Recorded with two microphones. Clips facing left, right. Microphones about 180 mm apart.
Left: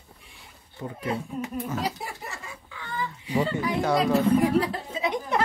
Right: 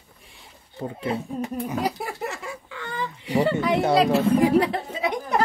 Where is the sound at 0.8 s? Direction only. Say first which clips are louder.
Right 3 dB; 30° right (ahead or behind).